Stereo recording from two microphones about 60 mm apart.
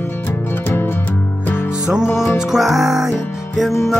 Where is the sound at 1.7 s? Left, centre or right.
Centre.